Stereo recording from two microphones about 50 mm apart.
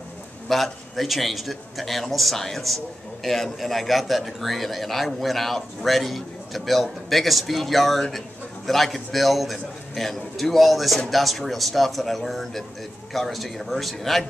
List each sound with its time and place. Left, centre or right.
0.5 s a man's voice: centre